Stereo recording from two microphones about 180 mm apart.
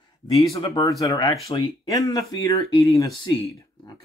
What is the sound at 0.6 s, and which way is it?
Speech, 25° left (ahead or behind).